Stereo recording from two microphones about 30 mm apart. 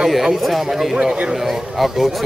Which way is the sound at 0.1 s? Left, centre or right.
Centre.